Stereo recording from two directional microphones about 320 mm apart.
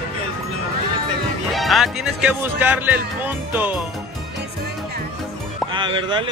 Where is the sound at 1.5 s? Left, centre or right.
Centre.